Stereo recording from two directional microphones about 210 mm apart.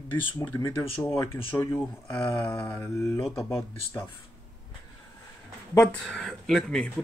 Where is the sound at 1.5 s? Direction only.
10° left (ahead or behind).